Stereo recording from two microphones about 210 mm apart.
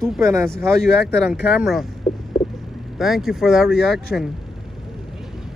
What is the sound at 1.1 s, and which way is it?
Speech, centre (ahead or behind).